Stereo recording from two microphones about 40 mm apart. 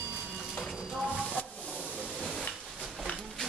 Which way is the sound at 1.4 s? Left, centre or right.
Left.